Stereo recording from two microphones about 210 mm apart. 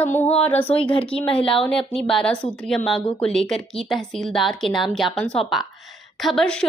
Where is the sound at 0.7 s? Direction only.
30° left (ahead or behind).